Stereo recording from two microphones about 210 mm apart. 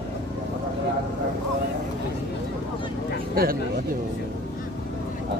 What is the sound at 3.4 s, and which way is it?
Speech, 45° right (ahead or behind).